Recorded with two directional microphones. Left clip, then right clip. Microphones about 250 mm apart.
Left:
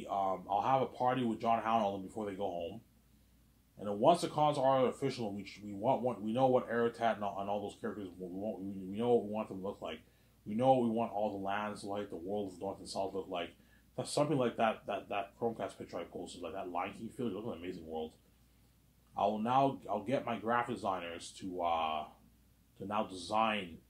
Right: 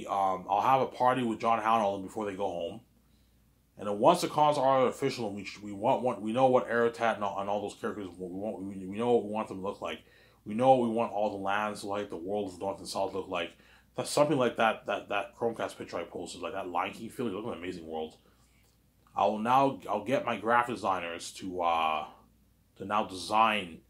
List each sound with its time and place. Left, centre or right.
0.0 s speech: centre
3.8 s speech: centre
19.1 s speech: centre